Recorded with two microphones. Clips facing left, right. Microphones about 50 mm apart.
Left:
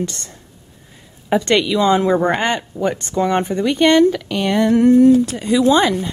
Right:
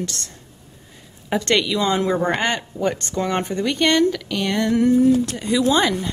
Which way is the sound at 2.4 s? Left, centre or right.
Centre.